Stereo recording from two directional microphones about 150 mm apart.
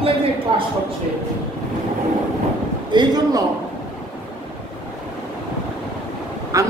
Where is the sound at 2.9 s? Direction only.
30° right (ahead or behind).